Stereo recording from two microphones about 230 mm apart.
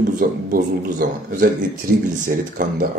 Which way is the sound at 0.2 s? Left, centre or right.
Right.